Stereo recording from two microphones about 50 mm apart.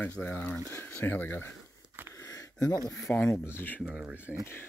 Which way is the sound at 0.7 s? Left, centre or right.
Left.